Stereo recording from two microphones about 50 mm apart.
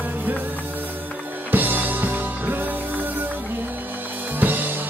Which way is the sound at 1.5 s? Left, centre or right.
Right.